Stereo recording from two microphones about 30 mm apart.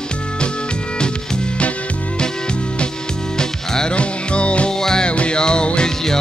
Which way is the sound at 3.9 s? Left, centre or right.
Left.